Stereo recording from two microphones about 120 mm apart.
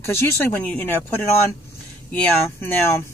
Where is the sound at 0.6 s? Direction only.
15° left (ahead or behind).